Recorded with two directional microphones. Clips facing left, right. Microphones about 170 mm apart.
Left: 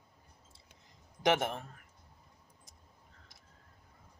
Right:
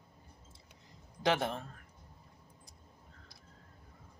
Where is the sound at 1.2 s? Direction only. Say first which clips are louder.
Left 2 dB; 20° left (ahead or behind).